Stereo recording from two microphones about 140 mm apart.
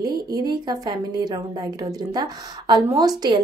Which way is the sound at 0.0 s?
30° right (ahead or behind).